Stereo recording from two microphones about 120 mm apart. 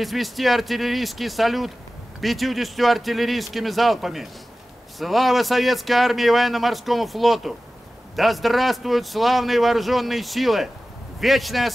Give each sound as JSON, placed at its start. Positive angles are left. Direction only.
{"t": 0.0, "sound": "speech", "side_deg": 0}